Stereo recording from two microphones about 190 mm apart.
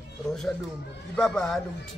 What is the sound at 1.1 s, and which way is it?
Speech, 5° left (ahead or behind).